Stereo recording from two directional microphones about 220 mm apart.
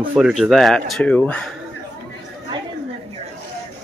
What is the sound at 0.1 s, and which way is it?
Speech, 5° right (ahead or behind).